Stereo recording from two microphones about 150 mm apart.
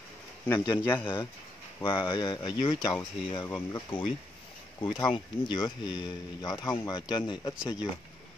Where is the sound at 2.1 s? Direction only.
25° left (ahead or behind).